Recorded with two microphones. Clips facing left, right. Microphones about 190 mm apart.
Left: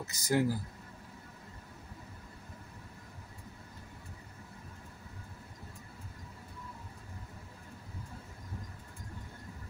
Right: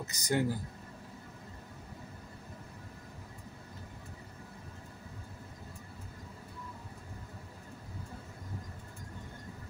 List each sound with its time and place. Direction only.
0.0 s speech: 5° left (ahead or behind)